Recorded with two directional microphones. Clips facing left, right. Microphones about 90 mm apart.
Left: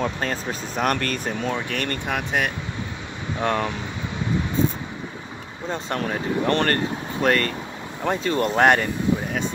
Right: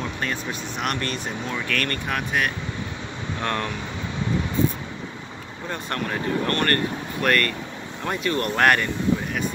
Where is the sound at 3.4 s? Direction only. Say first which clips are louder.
Left 4 dB; 15° left (ahead or behind).